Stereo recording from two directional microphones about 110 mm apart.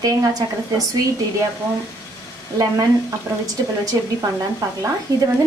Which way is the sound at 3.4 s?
30° right (ahead or behind).